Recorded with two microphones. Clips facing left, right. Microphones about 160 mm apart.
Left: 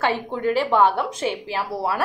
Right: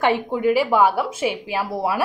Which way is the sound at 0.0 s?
15° right (ahead or behind).